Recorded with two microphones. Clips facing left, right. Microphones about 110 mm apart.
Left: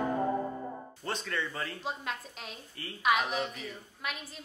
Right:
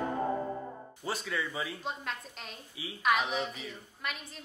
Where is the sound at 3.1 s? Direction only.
Centre (ahead or behind).